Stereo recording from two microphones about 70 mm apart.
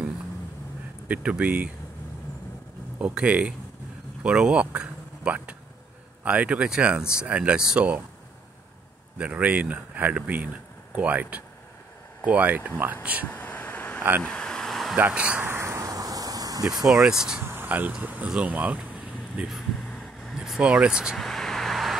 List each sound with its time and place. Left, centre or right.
1.0 s speech: centre
3.0 s speech: centre
9.2 s speech: right
13.3 s a sound: left
14.2 s vehicle: centre
15.0 s speech: centre
15.4 s a sound: right
16.8 s speech: centre
17.4 s speech: right
18.4 s a sound: right
19.5 s vehicle: centre
20.3 s speech: centre
21.2 s vehicle: centre